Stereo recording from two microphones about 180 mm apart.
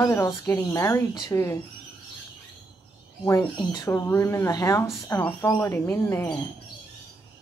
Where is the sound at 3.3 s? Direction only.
20° left (ahead or behind).